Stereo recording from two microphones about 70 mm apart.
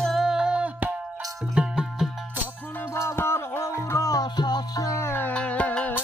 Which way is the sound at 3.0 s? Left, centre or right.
Left.